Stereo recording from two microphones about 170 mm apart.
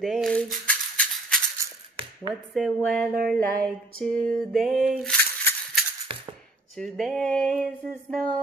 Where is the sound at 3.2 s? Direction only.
60° right (ahead or behind).